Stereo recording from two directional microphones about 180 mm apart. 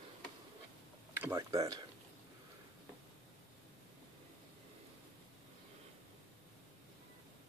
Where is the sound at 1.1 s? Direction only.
15° right (ahead or behind).